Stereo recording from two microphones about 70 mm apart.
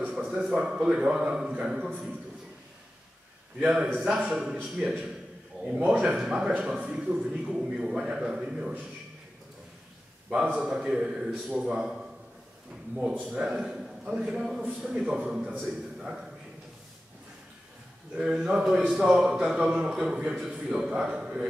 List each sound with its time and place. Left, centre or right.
0.1 s a man's voice: centre
3.5 s a man's voice: centre
5.8 s a man's voice: centre
10.3 s a man's voice: centre
13.1 s a man's voice: right
13.4 s a man's voice: centre
18.1 s a man's voice: centre